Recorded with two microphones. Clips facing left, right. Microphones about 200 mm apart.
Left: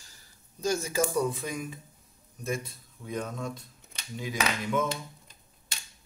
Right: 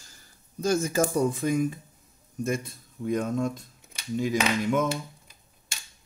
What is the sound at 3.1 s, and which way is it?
Speech, 45° right (ahead or behind).